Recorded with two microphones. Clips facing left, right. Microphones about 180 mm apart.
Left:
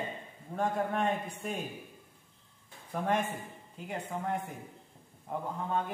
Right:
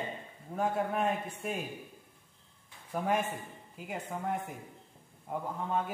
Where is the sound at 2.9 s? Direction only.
5° right (ahead or behind).